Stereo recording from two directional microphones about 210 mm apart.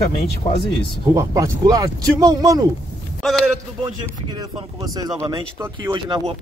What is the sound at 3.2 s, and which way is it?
Speech, centre (ahead or behind).